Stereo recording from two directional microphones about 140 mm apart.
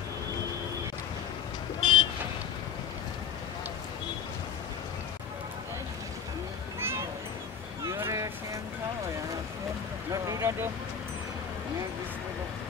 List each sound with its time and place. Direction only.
1.8 s vehicle: 35° left (ahead or behind)
6.8 s a sound: 15° right (ahead or behind)
7.8 s vehicle: 20° right (ahead or behind)
10.2 s vehicle: 20° right (ahead or behind)